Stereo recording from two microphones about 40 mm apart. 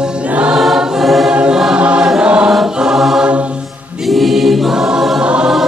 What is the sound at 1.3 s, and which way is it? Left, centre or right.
Choir, right.